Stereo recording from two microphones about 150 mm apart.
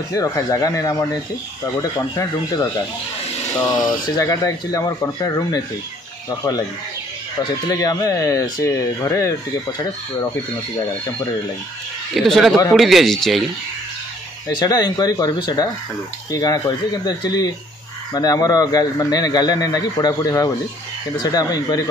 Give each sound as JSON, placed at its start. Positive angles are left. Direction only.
{"t": 0.1, "sound": "speech", "side_deg": 25}
{"t": 7.3, "sound": "speech", "side_deg": 25}
{"t": 12.2, "sound": "a man's voice", "side_deg": 0}
{"t": 14.6, "sound": "speech", "side_deg": 25}